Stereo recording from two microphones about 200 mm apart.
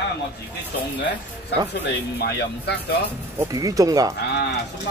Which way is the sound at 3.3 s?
15° right (ahead or behind).